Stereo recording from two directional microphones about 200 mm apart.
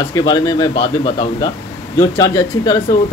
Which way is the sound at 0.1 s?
20° left (ahead or behind).